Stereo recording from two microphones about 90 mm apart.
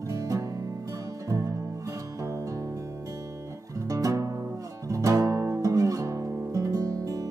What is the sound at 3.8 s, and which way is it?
Music, 40° right (ahead or behind).